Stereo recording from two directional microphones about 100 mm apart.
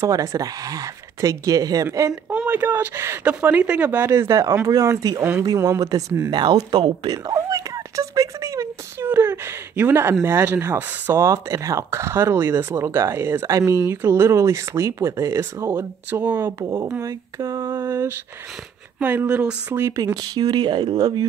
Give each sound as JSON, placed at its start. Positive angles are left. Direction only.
{"t": 0.0, "sound": "speech", "side_deg": -30}
{"t": 2.2, "sound": "speech", "side_deg": -20}
{"t": 7.3, "sound": "a sound", "side_deg": -35}
{"t": 9.1, "sound": "a sound", "side_deg": -20}
{"t": 10.2, "sound": "speech", "side_deg": -25}
{"t": 16.1, "sound": "speech", "side_deg": -20}
{"t": 16.6, "sound": "speech", "side_deg": -35}
{"t": 20.2, "sound": "speech", "side_deg": -45}